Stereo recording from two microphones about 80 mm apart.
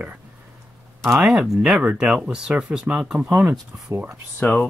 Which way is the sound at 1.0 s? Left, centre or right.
Centre.